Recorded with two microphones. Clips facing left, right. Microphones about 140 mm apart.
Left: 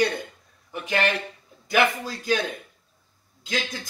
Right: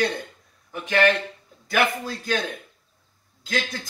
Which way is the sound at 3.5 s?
Centre (ahead or behind).